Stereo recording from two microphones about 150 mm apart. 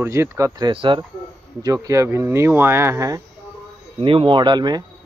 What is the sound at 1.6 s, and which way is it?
Speech, 25° right (ahead or behind).